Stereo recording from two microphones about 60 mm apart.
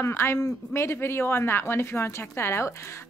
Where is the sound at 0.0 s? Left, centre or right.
Left.